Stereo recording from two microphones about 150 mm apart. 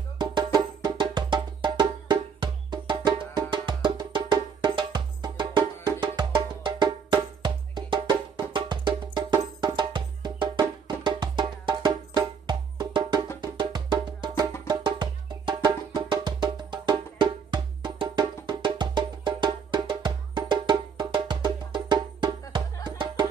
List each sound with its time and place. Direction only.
0.2 s music: 30° right (ahead or behind)